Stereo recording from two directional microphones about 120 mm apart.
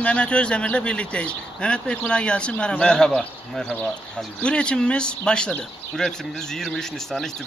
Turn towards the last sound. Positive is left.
turn(degrees=5)  # may be behind; listen again after turning